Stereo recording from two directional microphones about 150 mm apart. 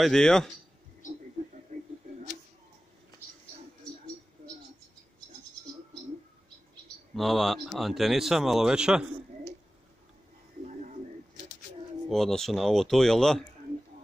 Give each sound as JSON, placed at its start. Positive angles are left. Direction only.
{"t": 0.0, "sound": "speech", "side_deg": 5}
{"t": 1.7, "sound": "a sound", "side_deg": -55}
{"t": 7.2, "sound": "speech", "side_deg": 0}
{"t": 12.1, "sound": "speech", "side_deg": 5}